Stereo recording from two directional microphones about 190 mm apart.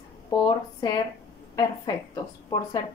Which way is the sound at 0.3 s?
20° left (ahead or behind).